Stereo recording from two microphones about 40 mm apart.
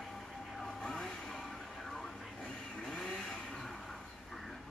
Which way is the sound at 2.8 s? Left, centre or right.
Centre.